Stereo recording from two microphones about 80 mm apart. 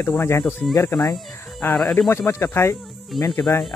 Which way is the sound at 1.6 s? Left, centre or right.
Left.